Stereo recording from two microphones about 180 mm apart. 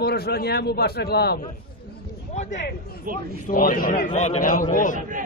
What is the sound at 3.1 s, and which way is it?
Speech, 50° right (ahead or behind).